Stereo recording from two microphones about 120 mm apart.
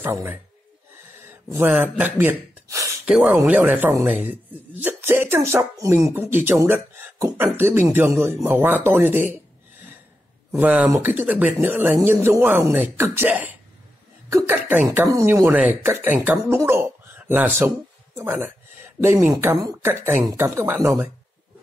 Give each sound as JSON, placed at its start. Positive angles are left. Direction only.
{"t": 0.0, "sound": "speech", "side_deg": -15}
{"t": 3.1, "sound": "speech", "side_deg": -5}
{"t": 3.4, "sound": "speech", "side_deg": -15}